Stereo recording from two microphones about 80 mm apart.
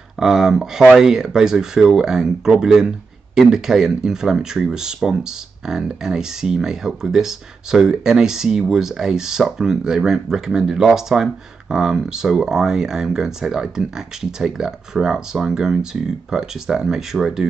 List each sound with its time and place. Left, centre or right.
0.2 s speech: centre